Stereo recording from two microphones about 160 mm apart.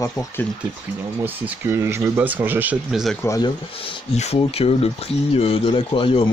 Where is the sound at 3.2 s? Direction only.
20° left (ahead or behind).